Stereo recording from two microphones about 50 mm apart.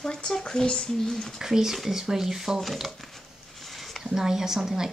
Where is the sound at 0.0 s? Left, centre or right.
Centre.